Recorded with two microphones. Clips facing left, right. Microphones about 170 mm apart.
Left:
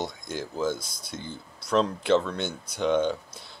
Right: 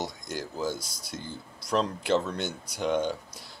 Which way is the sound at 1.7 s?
10° right (ahead or behind).